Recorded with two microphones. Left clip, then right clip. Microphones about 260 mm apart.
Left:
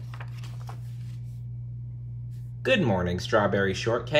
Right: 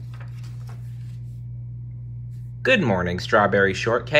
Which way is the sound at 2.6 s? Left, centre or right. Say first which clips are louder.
Right 5 dB; centre.